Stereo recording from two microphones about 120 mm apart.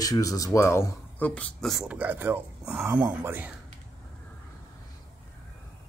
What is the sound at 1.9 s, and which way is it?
Speech, 15° right (ahead or behind).